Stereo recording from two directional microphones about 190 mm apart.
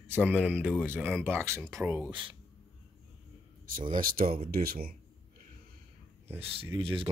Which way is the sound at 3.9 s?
50° right (ahead or behind).